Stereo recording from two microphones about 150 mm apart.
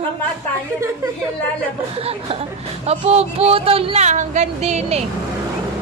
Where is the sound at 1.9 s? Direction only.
40° right (ahead or behind).